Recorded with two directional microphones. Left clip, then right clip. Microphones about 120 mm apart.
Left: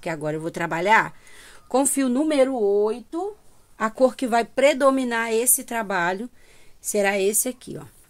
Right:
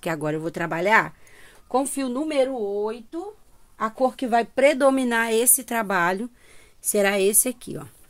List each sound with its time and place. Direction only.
0.0 s speech: 30° right (ahead or behind); by 1.1 s 15° right (ahead or behind)
2.0 s speech: 75° left (ahead or behind); by 3.2 s 90° left
4.2 s speech: 15° left (ahead or behind)
4.6 s speech: 15° right (ahead or behind)
4.9 s a woman's voice: 30° right (ahead or behind)